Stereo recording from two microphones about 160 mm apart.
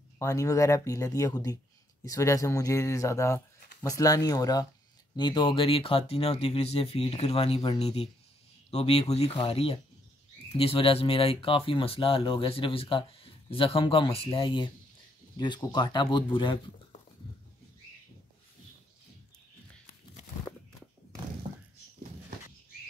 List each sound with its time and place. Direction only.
0.2 s speech: 20° left (ahead or behind)